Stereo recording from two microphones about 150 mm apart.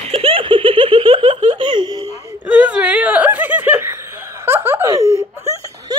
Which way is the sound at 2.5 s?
10° right (ahead or behind).